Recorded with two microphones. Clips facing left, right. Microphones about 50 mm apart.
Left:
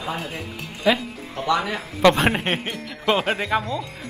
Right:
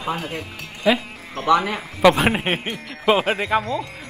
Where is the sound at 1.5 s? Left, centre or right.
Right.